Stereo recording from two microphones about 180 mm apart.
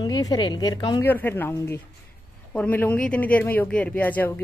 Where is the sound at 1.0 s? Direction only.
10° left (ahead or behind).